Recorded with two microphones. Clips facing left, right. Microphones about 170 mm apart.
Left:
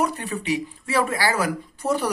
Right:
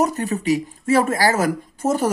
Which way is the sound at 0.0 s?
40° right (ahead or behind).